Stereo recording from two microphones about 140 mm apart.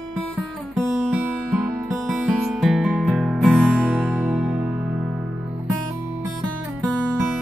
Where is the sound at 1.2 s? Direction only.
10° right (ahead or behind).